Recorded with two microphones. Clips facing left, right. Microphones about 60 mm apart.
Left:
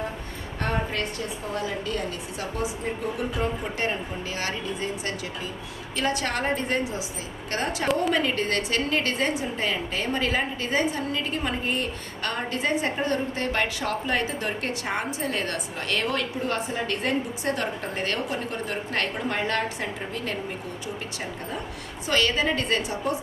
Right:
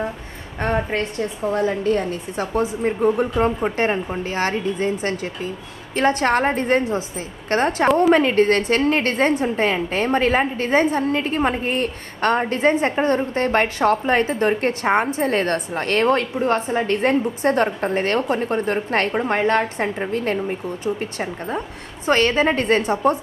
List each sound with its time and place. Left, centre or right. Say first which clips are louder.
0.6 s a woman's voice: right 6 dB; right